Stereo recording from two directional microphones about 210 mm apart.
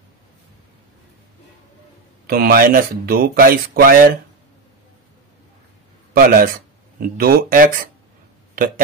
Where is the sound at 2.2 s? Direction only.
45° right (ahead or behind).